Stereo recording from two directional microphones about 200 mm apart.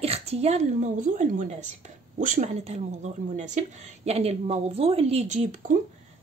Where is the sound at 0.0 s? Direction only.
30° right (ahead or behind).